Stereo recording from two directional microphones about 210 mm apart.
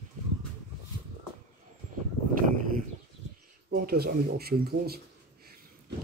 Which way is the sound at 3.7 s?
50° right (ahead or behind).